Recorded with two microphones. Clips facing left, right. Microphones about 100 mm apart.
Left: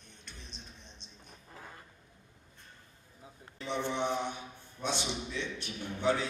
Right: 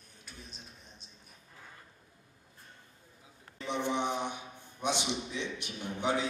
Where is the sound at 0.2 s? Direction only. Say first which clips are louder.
Right 1 dB; 5° right (ahead or behind).